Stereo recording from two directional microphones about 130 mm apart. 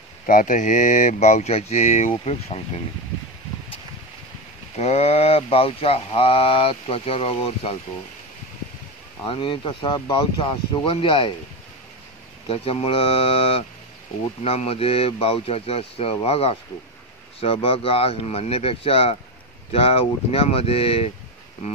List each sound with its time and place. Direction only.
0.3 s speech: 85° left; by 2.6 s 60° left (ahead or behind)
4.7 s speech: 55° left (ahead or behind)
9.2 s speech: 40° left (ahead or behind)
12.4 s speech: 45° left (ahead or behind)